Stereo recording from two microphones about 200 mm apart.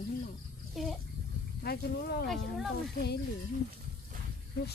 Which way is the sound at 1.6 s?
50° left (ahead or behind).